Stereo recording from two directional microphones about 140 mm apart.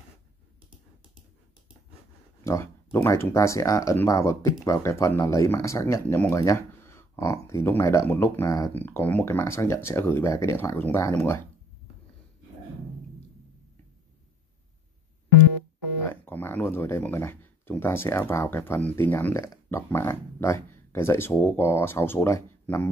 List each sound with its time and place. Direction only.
2.4 s speech: 20° left (ahead or behind)
8.7 s speech: 15° left (ahead or behind)
16.1 s speech: 15° left (ahead or behind)